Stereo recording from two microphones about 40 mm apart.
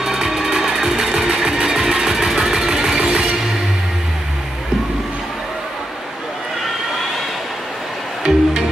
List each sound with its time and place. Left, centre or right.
0.0 s music: centre
8.2 s music: centre